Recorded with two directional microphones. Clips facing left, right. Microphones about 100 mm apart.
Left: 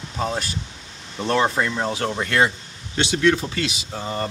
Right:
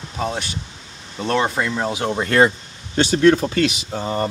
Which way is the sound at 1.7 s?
10° right (ahead or behind).